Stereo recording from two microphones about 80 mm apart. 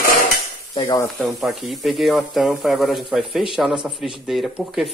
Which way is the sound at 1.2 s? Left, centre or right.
Centre.